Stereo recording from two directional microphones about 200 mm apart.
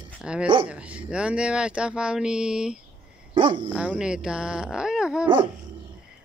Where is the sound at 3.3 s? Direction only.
25° right (ahead or behind).